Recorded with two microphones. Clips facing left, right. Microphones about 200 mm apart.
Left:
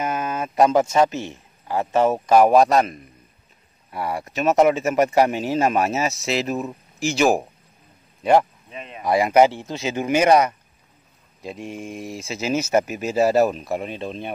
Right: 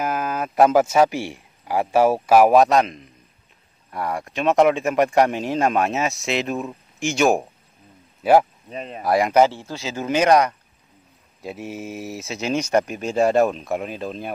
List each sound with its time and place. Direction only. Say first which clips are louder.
0.0 s speech: right 1 dB; centre (ahead or behind)
8.6 s speech: right 5 dB; 35° right (ahead or behind)
9.0 s speech: left 1 dB; centre (ahead or behind)
11.4 s speech: right 1 dB; 5° right (ahead or behind)